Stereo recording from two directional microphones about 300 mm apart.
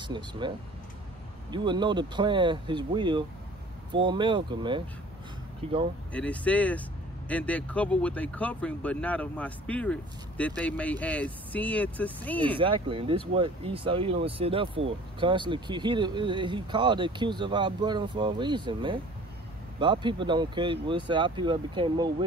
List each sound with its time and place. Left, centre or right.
0.0 s speech: centre
1.5 s speech: centre
6.1 s speech: centre
12.5 s speech: centre